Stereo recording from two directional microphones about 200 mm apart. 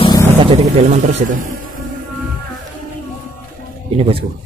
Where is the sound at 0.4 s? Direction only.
30° right (ahead or behind).